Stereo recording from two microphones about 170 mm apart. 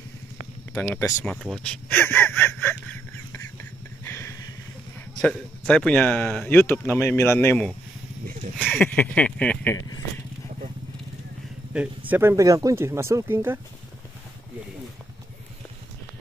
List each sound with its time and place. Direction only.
0.7 s speech: 15° left (ahead or behind)
1.2 s speech: 5° left (ahead or behind)
3.4 s vehicle: 15° left (ahead or behind)
5.2 s speech: 5° left (ahead or behind)
11.7 s speech: 5° right (ahead or behind)